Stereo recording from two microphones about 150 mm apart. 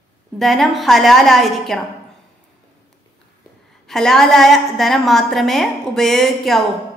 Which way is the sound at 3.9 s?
5° left (ahead or behind).